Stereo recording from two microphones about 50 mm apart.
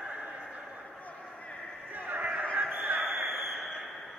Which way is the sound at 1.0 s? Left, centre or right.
Left.